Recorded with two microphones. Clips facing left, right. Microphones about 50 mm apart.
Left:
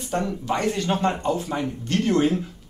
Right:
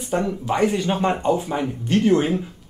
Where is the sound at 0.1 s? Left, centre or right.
Centre.